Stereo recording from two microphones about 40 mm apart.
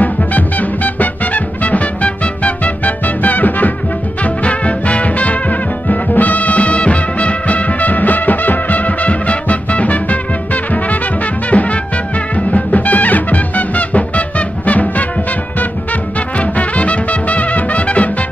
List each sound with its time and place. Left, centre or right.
0.0 s music: left
4.2 s music: left
16.3 s music: left